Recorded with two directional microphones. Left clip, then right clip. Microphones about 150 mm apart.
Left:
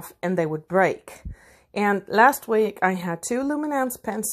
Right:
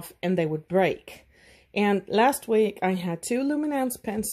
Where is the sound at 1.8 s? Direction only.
15° right (ahead or behind).